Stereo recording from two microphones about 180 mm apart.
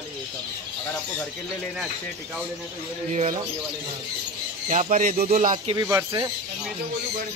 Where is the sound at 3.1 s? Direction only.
40° right (ahead or behind).